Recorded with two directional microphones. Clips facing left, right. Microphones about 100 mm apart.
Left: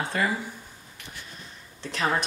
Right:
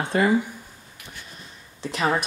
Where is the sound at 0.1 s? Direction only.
30° right (ahead or behind).